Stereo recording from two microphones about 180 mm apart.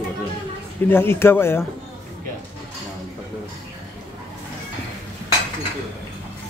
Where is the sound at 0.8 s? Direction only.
15° left (ahead or behind).